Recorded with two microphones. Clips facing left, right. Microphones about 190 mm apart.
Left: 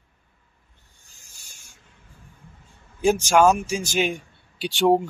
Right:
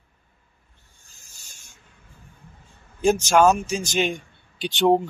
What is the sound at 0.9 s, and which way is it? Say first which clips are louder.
Rub: even; 15° left (ahead or behind).